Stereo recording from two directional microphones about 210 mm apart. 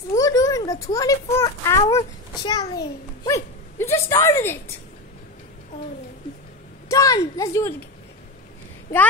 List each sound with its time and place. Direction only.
0.1 s speech: 15° left (ahead or behind)
6.9 s a woman's voice: 15° left (ahead or behind)